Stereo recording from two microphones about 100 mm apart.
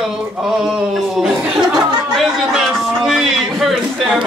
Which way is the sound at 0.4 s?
Centre (ahead or behind).